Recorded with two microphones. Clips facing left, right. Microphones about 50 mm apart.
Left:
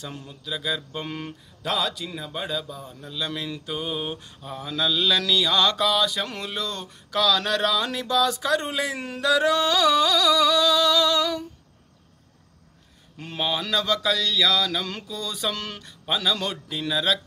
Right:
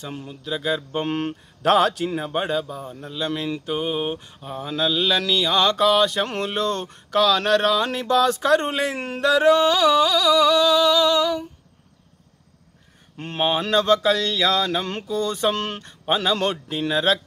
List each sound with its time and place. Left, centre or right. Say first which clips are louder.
0.0 s mantra: right 4 dB; right
1.0 s speech: right 8 dB; right
1.7 s a man's voice: right 9 dB; right
2.1 s mantra: right 7 dB; right
7.2 s mantra: right 4 dB; right
13.2 s a sound: right 5 dB; right